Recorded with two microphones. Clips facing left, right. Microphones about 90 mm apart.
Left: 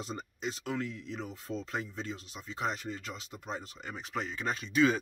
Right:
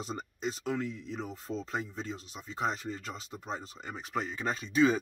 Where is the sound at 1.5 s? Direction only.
Centre (ahead or behind).